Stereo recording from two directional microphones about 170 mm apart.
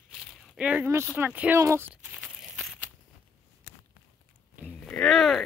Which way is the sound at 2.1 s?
Centre (ahead or behind).